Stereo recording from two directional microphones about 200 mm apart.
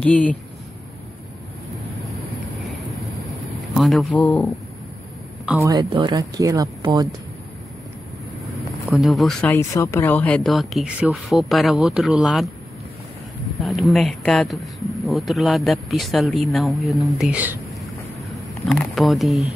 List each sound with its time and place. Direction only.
0.0 s speech: 5° left (ahead or behind)
3.3 s a sound: centre (ahead or behind)
5.6 s speech: 20° right (ahead or behind)
8.6 s speech: centre (ahead or behind)
9.6 s speech: 15° left (ahead or behind)
13.6 s speech: centre (ahead or behind)
18.8 s speech: centre (ahead or behind)